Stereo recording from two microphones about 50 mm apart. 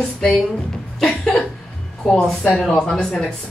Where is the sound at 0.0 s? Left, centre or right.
Left.